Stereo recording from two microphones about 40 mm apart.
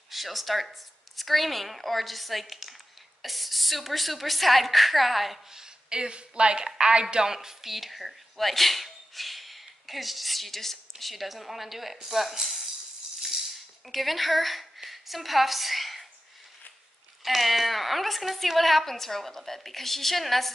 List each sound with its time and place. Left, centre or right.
0.1 s speech: centre
5.5 s a woman's voice: centre
7.3 s speech: centre
13.2 s a sound: centre
17.2 s speech: centre